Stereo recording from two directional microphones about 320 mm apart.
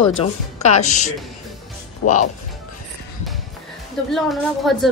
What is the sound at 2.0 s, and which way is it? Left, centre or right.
Speech, left.